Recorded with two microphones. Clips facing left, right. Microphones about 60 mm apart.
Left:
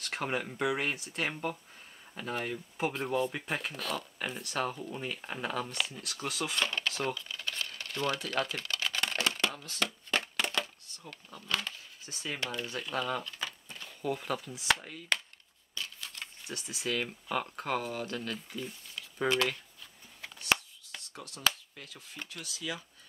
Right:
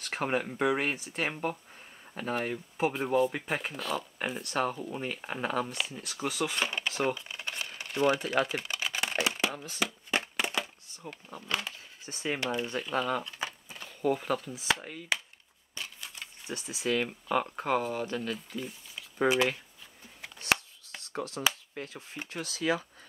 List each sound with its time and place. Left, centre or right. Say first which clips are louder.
0.0 s speech: right 3 dB; centre
6.4 s computer keyboard: even; centre
11.5 s speech: even; centre
15.7 s a sound: even; right
16.4 s speech: right 4 dB; centre
20.3 s a sound: right 1 dB; right
21.1 s speech: right 2 dB; right
22.4 s speech: right 10 dB; right